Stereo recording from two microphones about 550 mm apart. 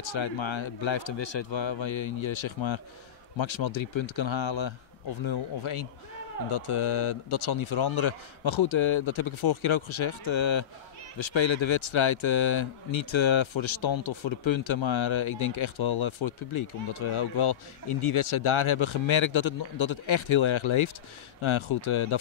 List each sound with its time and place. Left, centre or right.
0.0 s speech: left